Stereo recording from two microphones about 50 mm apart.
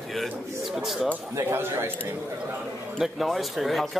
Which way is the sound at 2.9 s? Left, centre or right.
Centre.